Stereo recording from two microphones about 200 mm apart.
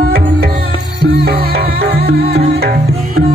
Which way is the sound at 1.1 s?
50° right (ahead or behind).